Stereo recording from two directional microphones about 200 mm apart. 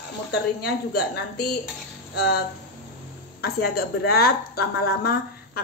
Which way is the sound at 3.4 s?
50° left (ahead or behind).